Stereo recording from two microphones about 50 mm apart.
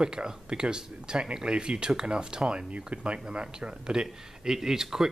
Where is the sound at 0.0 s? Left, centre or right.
Centre.